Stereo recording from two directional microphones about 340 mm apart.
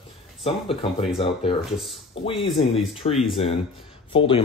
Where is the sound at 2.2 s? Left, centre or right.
Centre.